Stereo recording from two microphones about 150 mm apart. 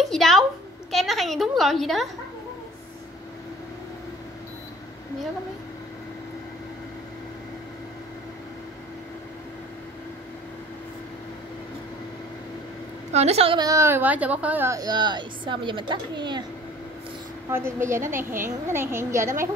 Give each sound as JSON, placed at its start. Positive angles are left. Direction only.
{"t": 0.0, "sound": "a woman's voice", "side_deg": 0}
{"t": 13.1, "sound": "a woman's voice", "side_deg": -45}
{"t": 13.6, "sound": "a woman's voice", "side_deg": -20}
{"t": 17.5, "sound": "a woman's voice", "side_deg": -15}